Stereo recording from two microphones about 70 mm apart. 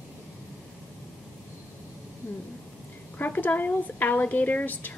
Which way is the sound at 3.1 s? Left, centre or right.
Left.